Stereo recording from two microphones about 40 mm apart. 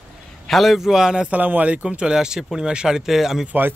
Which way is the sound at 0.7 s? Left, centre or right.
Centre.